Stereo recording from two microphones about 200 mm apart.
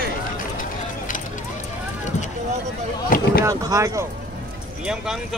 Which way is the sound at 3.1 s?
45° left (ahead or behind).